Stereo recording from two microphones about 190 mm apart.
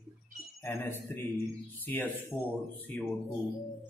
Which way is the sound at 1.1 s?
10° left (ahead or behind).